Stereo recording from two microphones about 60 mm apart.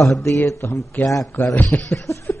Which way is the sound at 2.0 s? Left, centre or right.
Left.